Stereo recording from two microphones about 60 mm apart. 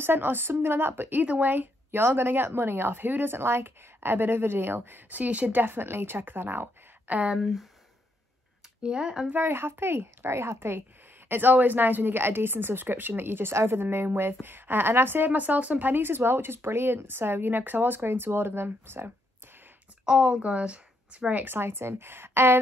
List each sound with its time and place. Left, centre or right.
0.0 s speech: right
1.2 s speech: right
7.1 s a woman's voice: right
7.3 s speech: centre
8.8 s speech: centre
9.3 s speech: right
11.2 s speech: right
20.1 s a woman's voice: centre
21.5 s a woman's voice: right